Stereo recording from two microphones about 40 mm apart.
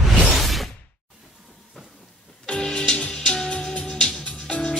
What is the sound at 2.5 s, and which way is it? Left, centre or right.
Music, centre.